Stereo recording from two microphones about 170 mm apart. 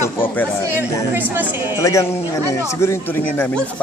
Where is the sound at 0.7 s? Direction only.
10° right (ahead or behind).